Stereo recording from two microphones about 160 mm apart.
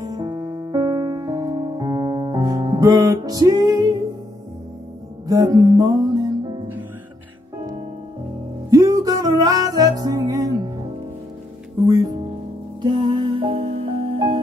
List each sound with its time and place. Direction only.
0.0 s music: 25° right (ahead or behind)
5.2 s music: 20° right (ahead or behind)
8.6 s music: 20° right (ahead or behind)
11.8 s music: 25° right (ahead or behind)